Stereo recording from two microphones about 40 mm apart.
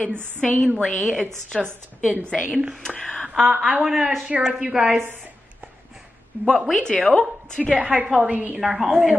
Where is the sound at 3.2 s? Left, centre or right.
Right.